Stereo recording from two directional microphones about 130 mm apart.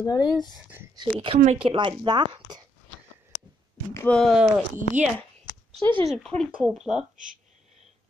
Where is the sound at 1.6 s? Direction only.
40° right (ahead or behind).